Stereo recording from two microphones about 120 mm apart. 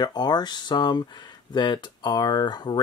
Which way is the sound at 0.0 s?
35° left (ahead or behind).